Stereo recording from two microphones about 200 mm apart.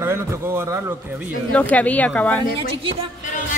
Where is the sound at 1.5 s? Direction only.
5° left (ahead or behind).